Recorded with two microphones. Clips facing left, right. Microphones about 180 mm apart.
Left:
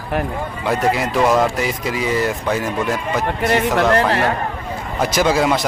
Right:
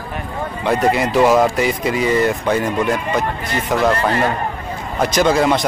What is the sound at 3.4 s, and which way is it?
Speech, 75° left (ahead or behind).